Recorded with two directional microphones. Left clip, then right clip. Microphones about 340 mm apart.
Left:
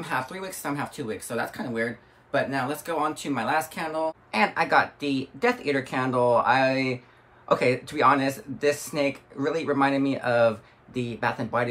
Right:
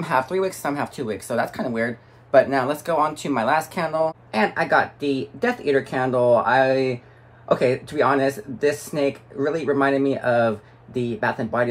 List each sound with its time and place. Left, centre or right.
0.0 s speech: centre
4.3 s speech: centre